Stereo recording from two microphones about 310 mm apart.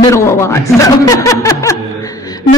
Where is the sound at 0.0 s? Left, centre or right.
Centre.